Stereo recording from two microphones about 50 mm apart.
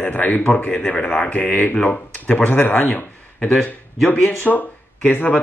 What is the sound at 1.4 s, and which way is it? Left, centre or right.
Speech, left.